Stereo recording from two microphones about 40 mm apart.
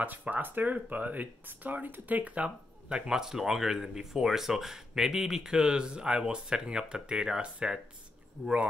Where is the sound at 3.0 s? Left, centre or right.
Centre.